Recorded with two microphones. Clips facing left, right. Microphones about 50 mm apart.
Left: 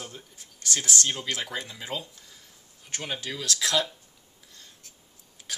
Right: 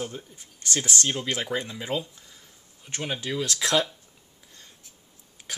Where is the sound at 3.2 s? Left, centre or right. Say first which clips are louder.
Right 3 dB; right.